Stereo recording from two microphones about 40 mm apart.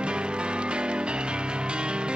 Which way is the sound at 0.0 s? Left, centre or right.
Right.